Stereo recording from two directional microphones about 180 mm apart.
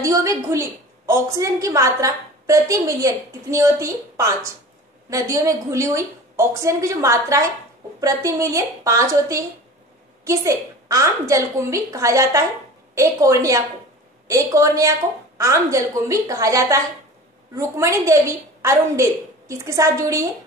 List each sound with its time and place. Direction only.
0.0 s a woman's voice: 15° right (ahead or behind)